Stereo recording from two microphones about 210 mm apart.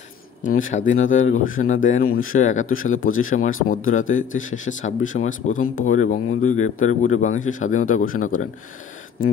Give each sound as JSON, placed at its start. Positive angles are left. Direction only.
{"t": 0.4, "sound": "speech", "side_deg": 40}
{"t": 2.0, "sound": "speech", "side_deg": 75}
{"t": 2.3, "sound": "speech", "side_deg": 35}
{"t": 2.6, "sound": "speech", "side_deg": 75}
{"t": 3.6, "sound": "speech", "side_deg": 40}
{"t": 4.3, "sound": "speech", "side_deg": 70}
{"t": 4.6, "sound": "speech", "side_deg": 35}
{"t": 6.5, "sound": "speech", "side_deg": 80}
{"t": 6.9, "sound": "speech", "side_deg": 35}